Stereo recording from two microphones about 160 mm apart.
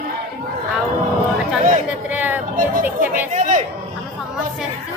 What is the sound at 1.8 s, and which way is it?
Speech, 10° right (ahead or behind).